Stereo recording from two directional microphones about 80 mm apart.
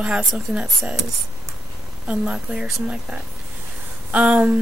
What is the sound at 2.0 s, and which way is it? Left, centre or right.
Speech, centre.